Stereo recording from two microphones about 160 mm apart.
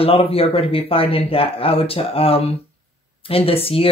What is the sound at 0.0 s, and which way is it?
Speech, 35° left (ahead or behind).